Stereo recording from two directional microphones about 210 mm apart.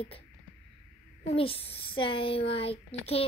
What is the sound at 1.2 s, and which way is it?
Speech, 25° left (ahead or behind).